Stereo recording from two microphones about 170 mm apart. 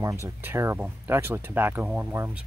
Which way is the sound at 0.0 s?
15° right (ahead or behind).